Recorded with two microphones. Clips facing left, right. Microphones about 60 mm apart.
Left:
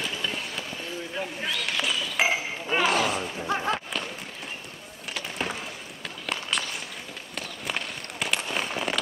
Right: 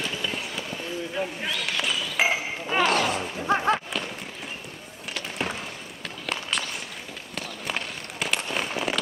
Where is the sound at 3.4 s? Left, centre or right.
Right.